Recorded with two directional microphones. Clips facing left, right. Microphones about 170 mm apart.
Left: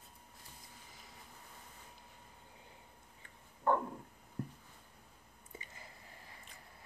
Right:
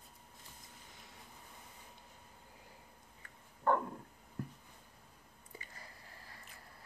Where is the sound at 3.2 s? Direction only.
15° left (ahead or behind).